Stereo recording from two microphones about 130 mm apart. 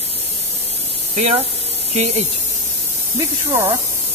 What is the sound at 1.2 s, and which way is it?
Speech, 55° right (ahead or behind).